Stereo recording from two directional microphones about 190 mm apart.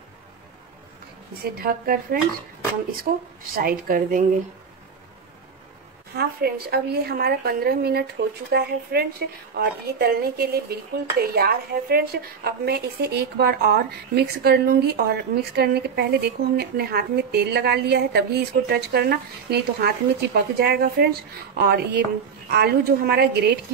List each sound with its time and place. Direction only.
1.4 s speech: 50° right (ahead or behind)
6.1 s speech: 55° right (ahead or behind)